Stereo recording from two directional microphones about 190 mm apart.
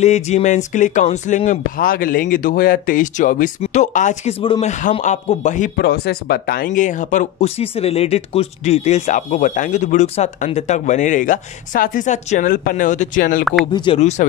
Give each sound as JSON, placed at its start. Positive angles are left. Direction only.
{"t": 0.0, "sound": "speech", "side_deg": 35}
{"t": 5.8, "sound": "speech", "side_deg": 60}
{"t": 13.7, "sound": "speech", "side_deg": 25}